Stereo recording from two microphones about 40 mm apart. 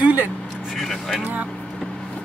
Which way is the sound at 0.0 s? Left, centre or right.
Right.